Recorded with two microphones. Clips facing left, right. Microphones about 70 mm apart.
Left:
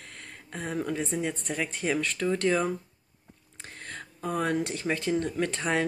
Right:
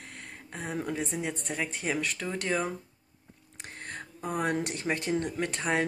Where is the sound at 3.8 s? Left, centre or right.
Centre.